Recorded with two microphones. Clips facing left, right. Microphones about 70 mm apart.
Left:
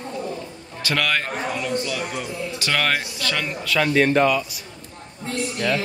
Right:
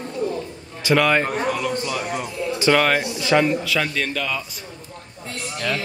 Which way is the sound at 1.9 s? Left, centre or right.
Centre.